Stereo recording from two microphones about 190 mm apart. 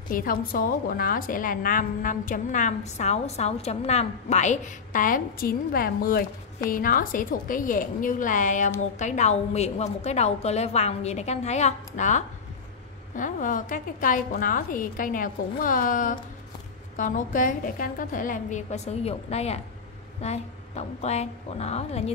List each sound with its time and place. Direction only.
0.1 s a woman's voice: 50° left (ahead or behind)